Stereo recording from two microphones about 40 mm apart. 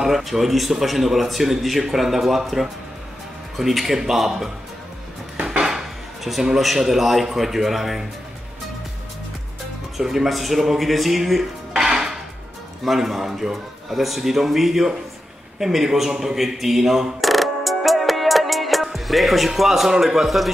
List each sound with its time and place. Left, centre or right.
0.0 s a man's voice: centre
5.7 s dishes: centre
6.6 s a man's voice: centre
9.9 s a man's voice: centre
11.7 s dishes: centre
12.8 s speech: centre